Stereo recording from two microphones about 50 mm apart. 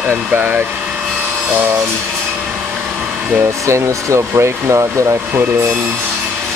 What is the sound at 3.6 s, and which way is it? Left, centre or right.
Speech, right.